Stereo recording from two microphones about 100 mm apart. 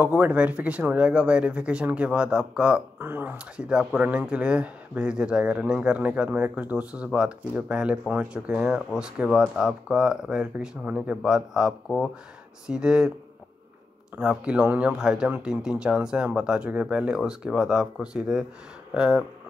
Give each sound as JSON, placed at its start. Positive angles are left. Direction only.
{"t": 0.0, "sound": "speech", "side_deg": -15}
{"t": 3.0, "sound": "speech", "side_deg": -20}
{"t": 3.5, "sound": "speech", "side_deg": -10}
{"t": 14.2, "sound": "speech", "side_deg": -10}